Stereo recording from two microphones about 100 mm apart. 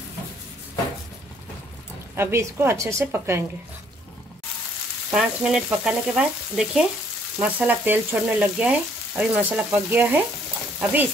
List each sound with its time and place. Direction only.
2.1 s a woman's voice: 25° right (ahead or behind)
5.1 s frying: 5° right (ahead or behind)
10.8 s speech: 15° right (ahead or behind)